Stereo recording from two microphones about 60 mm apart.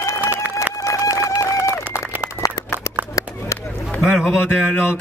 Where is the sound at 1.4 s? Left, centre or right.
Left.